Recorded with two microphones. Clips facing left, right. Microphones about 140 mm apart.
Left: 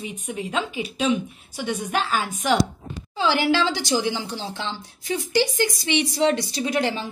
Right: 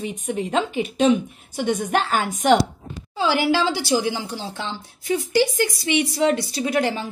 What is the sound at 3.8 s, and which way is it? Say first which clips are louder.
Speech: right 2 dB; 30° right (ahead or behind).